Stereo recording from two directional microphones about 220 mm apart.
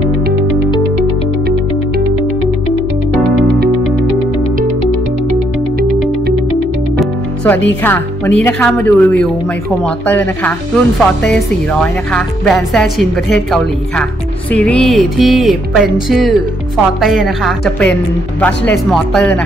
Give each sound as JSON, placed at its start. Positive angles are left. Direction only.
{"t": 7.0, "sound": "speech", "side_deg": 10}